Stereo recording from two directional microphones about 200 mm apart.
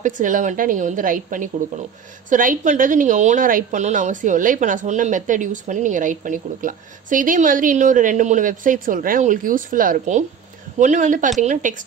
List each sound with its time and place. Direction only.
0.0 s a woman's voice: 40° right (ahead or behind)